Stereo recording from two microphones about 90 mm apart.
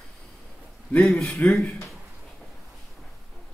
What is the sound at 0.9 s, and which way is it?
Speech, 10° left (ahead or behind).